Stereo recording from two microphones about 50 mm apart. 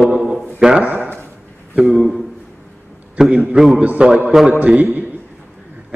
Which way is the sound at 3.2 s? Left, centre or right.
Centre.